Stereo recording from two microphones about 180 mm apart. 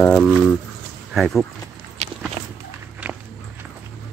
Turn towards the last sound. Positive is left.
turn(degrees=-10)  # may be behind; listen again after turning